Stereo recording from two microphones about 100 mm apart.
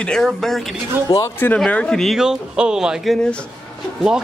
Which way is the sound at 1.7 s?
10° left (ahead or behind).